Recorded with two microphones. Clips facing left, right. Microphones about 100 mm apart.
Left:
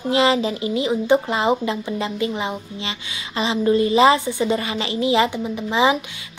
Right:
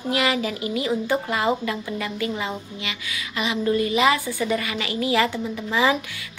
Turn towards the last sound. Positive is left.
turn(degrees=20)  # may be behind; listen again after turning